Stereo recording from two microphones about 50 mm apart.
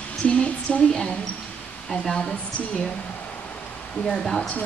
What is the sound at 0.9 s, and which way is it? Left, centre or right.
Speech, centre.